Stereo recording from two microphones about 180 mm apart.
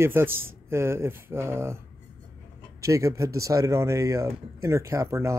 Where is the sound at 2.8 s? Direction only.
15° right (ahead or behind).